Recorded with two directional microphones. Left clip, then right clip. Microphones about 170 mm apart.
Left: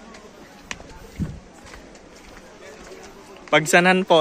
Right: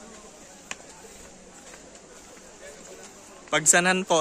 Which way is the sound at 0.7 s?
80° left.